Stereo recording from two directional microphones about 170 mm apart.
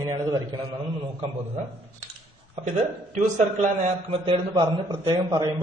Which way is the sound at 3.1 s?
45° right (ahead or behind).